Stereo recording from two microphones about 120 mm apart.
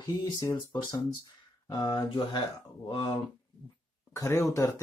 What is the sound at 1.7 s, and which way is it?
Speech, 35° left (ahead or behind).